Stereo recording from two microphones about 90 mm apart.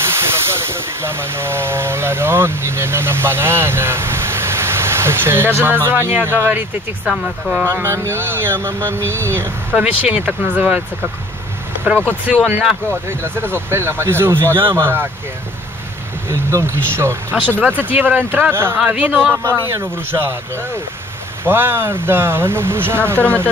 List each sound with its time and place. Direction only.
0.0 s speech: 30° right (ahead or behind)
7.6 s speech: 30° right (ahead or behind)
9.8 s speech: 15° right (ahead or behind)
13.2 s speech: 25° right (ahead or behind)
16.3 s speech: 30° right (ahead or behind)
17.3 s speech: 15° left (ahead or behind)
17.8 s speech: 20° right (ahead or behind)
19.4 s speech: 35° right (ahead or behind)
21.5 s speech: 25° right (ahead or behind)
23.1 s speech: 15° left (ahead or behind)